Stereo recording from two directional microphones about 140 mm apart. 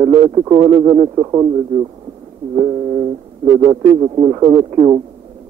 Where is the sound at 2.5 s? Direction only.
30° right (ahead or behind).